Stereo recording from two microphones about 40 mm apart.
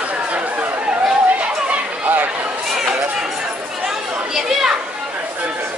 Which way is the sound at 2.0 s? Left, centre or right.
Right.